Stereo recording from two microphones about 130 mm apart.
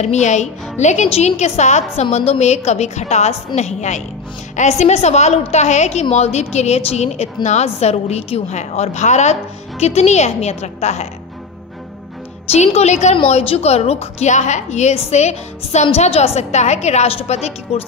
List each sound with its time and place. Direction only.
0.0 s a woman's voice: 60° left (ahead or behind)
12.4 s a woman's voice: 55° left (ahead or behind)